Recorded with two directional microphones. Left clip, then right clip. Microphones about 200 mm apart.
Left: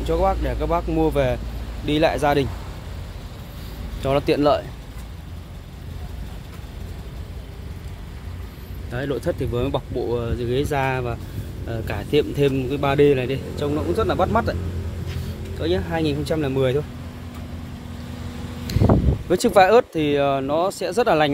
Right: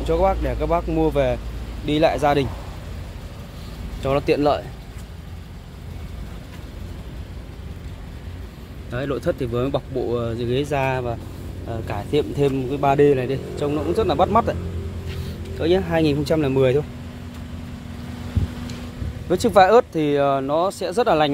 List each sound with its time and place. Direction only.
0.0 s a man's voice: 10° right (ahead or behind)
4.0 s a man's voice: centre (ahead or behind)
8.9 s a man's voice: 5° right (ahead or behind)
15.6 s speech: 25° right (ahead or behind)
19.2 s a man's voice: 5° left (ahead or behind)